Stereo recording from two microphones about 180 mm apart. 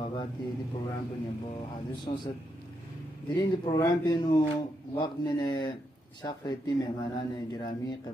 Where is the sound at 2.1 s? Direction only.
25° left (ahead or behind).